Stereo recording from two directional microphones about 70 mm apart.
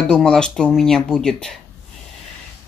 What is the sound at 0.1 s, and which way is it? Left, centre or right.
Speech, centre.